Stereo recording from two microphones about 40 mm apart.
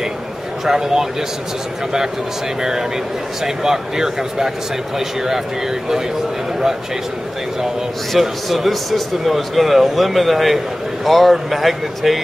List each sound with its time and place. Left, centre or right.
0.7 s speech: centre
3.4 s speech: centre
8.1 s speech: centre